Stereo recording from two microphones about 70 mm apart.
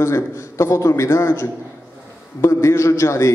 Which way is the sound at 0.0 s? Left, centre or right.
Left.